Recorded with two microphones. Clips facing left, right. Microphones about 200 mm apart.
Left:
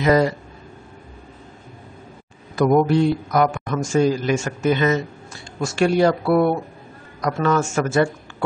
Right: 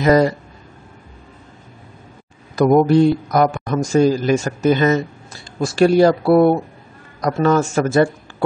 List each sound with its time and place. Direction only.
0.0 s a man's voice: 40° right (ahead or behind)
2.5 s a man's voice: 40° right (ahead or behind)